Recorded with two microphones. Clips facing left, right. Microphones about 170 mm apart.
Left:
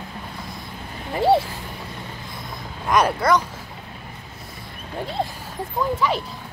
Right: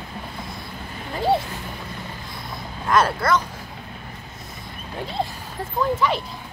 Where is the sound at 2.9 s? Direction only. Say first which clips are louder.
Left 1 dB; 15° left (ahead or behind).